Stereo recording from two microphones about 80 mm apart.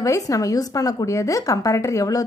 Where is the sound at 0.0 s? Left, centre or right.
Left.